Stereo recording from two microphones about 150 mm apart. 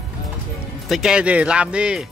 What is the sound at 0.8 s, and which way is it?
Speech, 5° right (ahead or behind).